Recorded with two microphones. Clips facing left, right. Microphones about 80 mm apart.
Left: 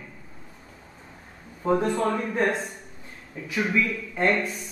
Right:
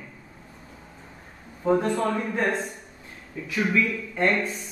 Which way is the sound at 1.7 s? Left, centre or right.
Centre.